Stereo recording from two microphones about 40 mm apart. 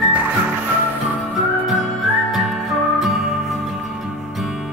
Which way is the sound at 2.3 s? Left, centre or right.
Centre.